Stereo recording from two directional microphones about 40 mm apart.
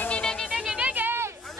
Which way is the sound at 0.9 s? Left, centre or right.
Right.